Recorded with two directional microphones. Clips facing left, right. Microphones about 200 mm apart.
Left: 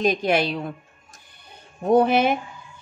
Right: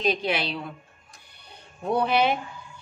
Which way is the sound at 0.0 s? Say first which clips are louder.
Left 5 dB; 45° left (ahead or behind).